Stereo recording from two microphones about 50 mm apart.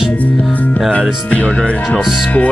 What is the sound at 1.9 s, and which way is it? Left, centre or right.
Speech, centre.